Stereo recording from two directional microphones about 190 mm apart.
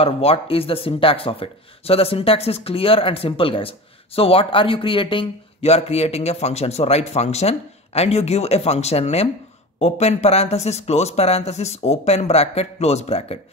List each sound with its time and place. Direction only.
0.0 s speech: 30° left (ahead or behind)